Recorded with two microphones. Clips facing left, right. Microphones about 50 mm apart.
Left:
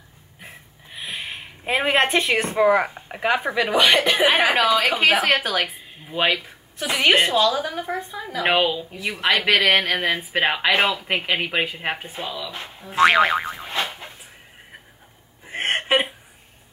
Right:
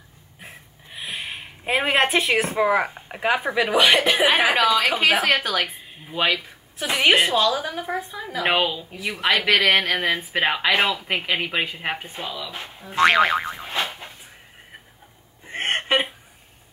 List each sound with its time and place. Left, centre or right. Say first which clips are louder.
0.4 s a woman's voice: even; centre
6.1 s speech: left 1 dB; centre
15.4 s a sound: left 1 dB; centre